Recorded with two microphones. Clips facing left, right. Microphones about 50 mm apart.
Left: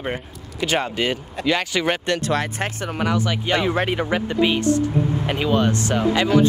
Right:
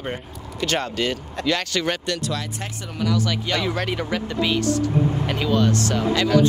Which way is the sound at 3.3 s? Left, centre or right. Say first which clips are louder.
Left 3 dB; left.